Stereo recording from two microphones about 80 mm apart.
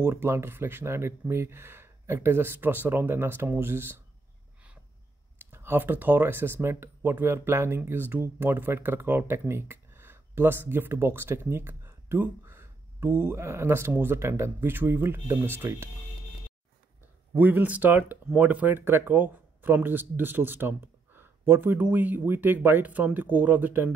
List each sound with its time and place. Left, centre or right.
0.0 s speech: right
5.4 s speech: right
17.4 s speech: right